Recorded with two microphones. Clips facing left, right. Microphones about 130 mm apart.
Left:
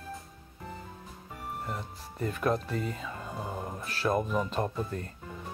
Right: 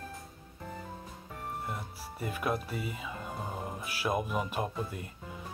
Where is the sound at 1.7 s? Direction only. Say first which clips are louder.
Left 1 dB; 10° right (ahead or behind).